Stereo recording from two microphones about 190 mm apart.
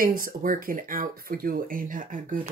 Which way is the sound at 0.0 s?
50° right (ahead or behind).